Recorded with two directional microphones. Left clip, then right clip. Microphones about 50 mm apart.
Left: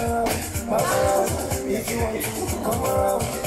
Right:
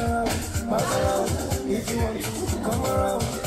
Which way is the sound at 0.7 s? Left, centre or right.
Right.